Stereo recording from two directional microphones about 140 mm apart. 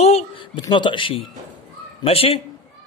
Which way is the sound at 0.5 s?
35° left (ahead or behind).